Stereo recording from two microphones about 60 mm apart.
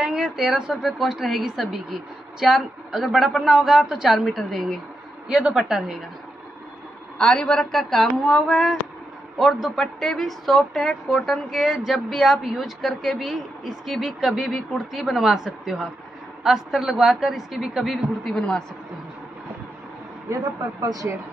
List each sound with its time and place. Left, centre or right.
0.0 s a woman's voice: centre
4.2 s a woman's voice: centre
7.2 s a woman's voice: centre
20.2 s speech: right